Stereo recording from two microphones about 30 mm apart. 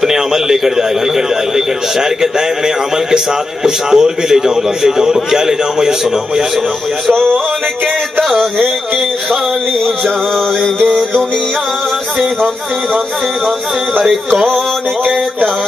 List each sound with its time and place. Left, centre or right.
0.0 s a man's voice: centre
3.6 s a man's voice: centre